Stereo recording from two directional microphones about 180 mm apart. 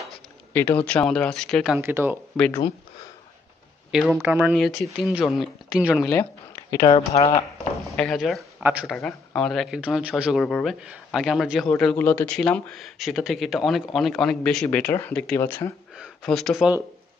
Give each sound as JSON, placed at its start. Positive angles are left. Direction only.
{"t": 0.5, "sound": "speech", "side_deg": 10}
{"t": 1.8, "sound": "speech", "side_deg": -10}
{"t": 2.3, "sound": "speech", "side_deg": 5}
{"t": 4.1, "sound": "speech", "side_deg": -10}
{"t": 6.0, "sound": "a sound", "side_deg": 15}
{"t": 6.9, "sound": "speech", "side_deg": 35}
{"t": 7.8, "sound": "speech", "side_deg": 0}
{"t": 8.9, "sound": "speech", "side_deg": 5}
{"t": 16.0, "sound": "speech", "side_deg": 0}